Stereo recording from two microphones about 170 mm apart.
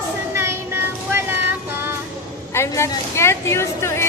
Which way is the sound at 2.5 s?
15° left (ahead or behind).